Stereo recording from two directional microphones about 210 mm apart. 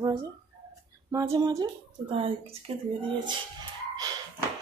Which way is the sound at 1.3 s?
20° right (ahead or behind).